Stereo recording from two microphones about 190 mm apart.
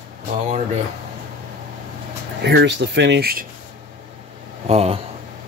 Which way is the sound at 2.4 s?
65° right (ahead or behind).